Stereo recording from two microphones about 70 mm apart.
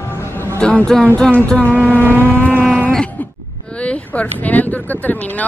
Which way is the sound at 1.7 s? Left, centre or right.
Right.